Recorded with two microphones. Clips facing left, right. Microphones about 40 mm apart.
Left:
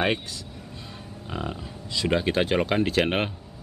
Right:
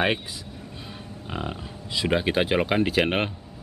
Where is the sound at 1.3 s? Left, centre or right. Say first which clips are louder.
Even; centre.